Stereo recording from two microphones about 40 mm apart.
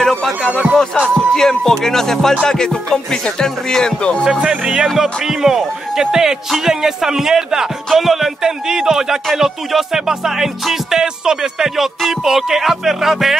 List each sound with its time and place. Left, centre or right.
0.5 s music: right
1.3 s music: centre
4.2 s music: centre
4.9 s speech: centre